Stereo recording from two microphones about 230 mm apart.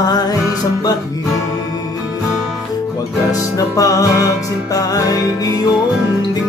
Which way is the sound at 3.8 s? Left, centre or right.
Centre.